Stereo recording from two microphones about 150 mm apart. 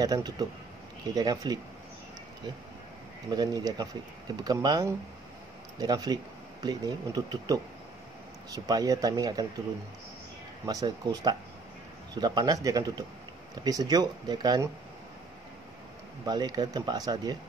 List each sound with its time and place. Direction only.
0.0 s speech: 25° right (ahead or behind)
3.3 s speech: 30° right (ahead or behind)
10.6 s speech: 25° right (ahead or behind)
16.3 s speech: 30° right (ahead or behind)